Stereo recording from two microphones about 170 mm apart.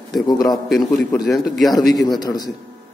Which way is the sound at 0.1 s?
25° left (ahead or behind).